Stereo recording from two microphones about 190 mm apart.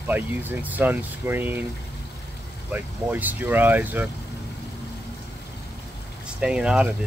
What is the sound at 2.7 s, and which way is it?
Speech, 10° right (ahead or behind).